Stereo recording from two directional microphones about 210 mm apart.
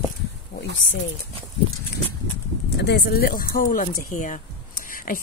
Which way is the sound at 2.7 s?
50° left (ahead or behind).